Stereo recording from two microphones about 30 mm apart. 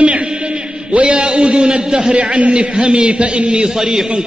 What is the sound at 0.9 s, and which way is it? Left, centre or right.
Speech, right.